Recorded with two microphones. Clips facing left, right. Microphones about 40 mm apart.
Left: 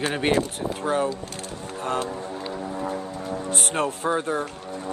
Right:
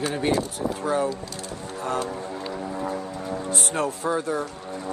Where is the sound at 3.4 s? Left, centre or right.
Left.